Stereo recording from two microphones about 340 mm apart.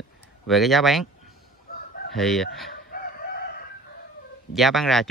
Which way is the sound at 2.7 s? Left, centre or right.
Left.